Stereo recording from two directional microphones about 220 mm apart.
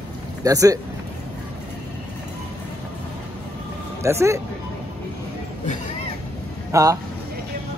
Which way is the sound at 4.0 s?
10° right (ahead or behind).